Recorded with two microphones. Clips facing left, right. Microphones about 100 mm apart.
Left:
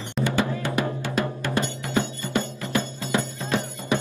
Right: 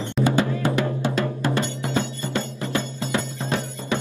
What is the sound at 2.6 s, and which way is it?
Music, 20° right (ahead or behind).